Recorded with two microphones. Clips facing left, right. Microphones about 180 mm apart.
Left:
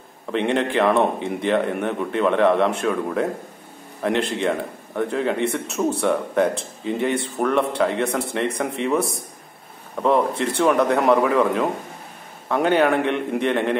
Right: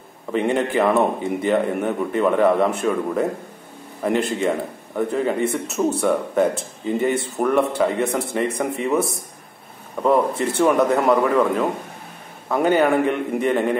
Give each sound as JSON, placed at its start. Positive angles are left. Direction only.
{"t": 0.3, "sound": "speech", "side_deg": -5}
{"t": 10.0, "sound": "speech", "side_deg": -5}